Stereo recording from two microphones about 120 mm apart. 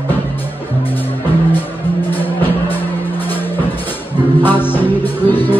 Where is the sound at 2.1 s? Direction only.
15° left (ahead or behind).